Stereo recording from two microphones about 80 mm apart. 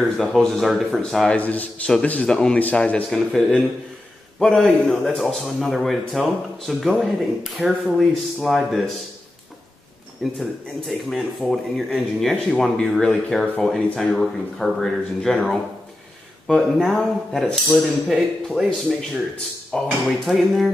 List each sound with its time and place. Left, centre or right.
0.2 s a man's voice: centre
1.3 s a man's voice: centre
10.4 s a man's voice: centre
20.2 s a man's voice: centre